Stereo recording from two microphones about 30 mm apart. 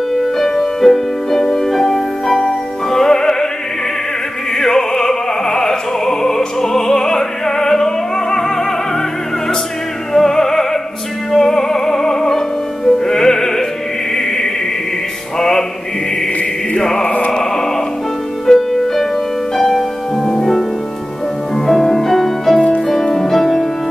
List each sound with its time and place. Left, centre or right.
0.1 s music: centre
4.6 s music: centre
10.1 s music: centre
15.3 s mantra: centre
16.8 s mantra: centre
17.3 s music: centre
21.6 s music: centre